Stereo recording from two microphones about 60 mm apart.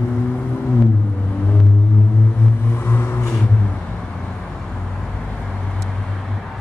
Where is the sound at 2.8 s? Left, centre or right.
Left.